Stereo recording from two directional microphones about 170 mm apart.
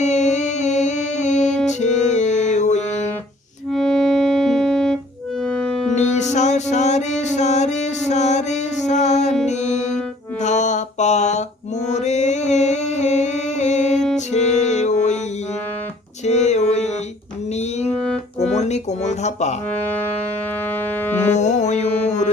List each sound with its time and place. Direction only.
0.0 s music: 45° left (ahead or behind)
3.7 s music: 5° left (ahead or behind)
5.9 s music: 45° left (ahead or behind)
10.4 s mantra: 45° left (ahead or behind)
11.9 s singing: 45° left (ahead or behind)
14.1 s music: 40° left (ahead or behind)
16.3 s a sound: 40° left (ahead or behind)
17.9 s music: 5° left (ahead or behind)
18.5 s a sound: 40° left (ahead or behind)
21.4 s music: 45° left (ahead or behind)